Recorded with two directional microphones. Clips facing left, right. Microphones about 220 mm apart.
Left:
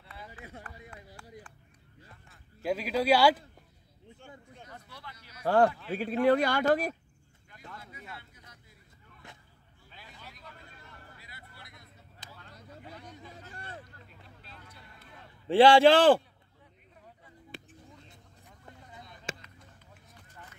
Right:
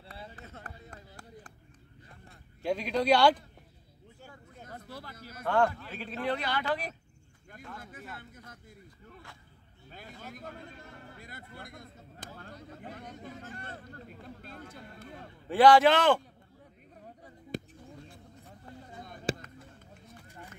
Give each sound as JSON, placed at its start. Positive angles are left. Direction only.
{"t": 0.0, "sound": "run", "side_deg": -35}
{"t": 2.6, "sound": "speech", "side_deg": 5}
{"t": 4.6, "sound": "a sound", "side_deg": -40}
{"t": 5.4, "sound": "a man's voice", "side_deg": 35}
{"t": 8.2, "sound": "speech", "side_deg": -50}
{"t": 9.8, "sound": "vehicle", "side_deg": -45}
{"t": 13.4, "sound": "a sound", "side_deg": -50}
{"t": 15.4, "sound": "a man's voice", "side_deg": 25}
{"t": 17.2, "sound": "a sound", "side_deg": -40}